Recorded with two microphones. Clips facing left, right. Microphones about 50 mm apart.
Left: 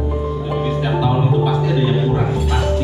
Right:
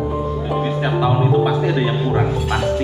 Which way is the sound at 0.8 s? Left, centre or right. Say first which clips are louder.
Right 1 dB; right.